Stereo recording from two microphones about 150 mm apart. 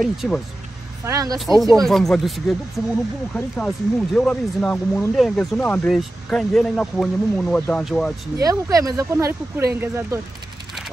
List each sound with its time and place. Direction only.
0.0 s speech: 5° right (ahead or behind)
1.0 s speech: 25° right (ahead or behind)
1.6 s speech: centre (ahead or behind)
8.4 s speech: 25° right (ahead or behind)